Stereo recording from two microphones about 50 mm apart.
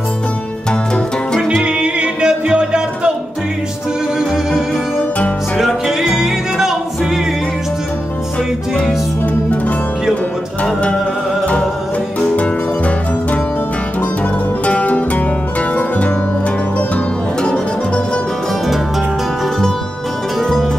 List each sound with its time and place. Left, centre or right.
0.7 s music: centre
1.6 s music: centre
4.2 s music: centre
10.6 s music: left
12.4 s music: left
14.6 s music: left
17.4 s music: left
20.3 s music: centre